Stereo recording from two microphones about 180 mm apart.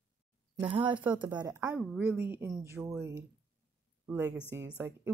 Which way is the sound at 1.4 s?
20° right (ahead or behind).